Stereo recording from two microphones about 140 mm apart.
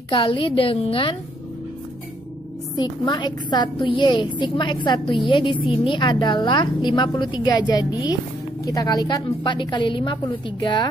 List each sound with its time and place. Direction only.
0.1 s a woman's voice: 40° left (ahead or behind)
2.7 s a woman's voice: 30° left (ahead or behind)